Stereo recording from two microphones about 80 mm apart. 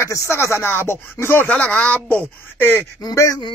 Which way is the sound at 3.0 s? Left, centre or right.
Left.